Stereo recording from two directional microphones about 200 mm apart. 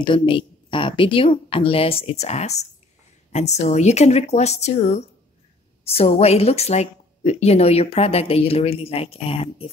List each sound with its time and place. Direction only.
0.0 s speech: 25° left (ahead or behind)